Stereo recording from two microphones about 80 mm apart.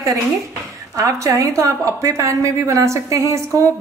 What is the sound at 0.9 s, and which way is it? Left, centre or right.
Speech, right.